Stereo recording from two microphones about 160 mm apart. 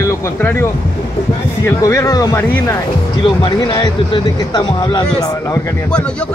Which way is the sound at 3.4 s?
30° left (ahead or behind).